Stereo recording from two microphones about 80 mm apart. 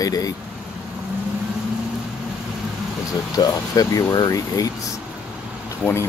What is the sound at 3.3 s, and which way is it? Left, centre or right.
Speech, left.